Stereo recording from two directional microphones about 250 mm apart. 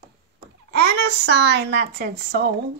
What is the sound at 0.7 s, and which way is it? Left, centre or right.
Speech, right.